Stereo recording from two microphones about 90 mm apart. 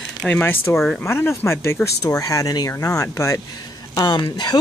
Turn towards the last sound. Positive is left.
turn(degrees=55)  # may be behind; listen again after turning